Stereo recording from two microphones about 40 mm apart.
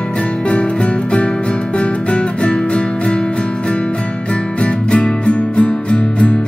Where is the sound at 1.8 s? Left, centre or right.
Left.